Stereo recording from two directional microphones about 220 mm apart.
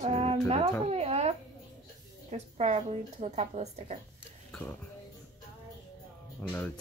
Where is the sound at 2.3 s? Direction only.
30° right (ahead or behind).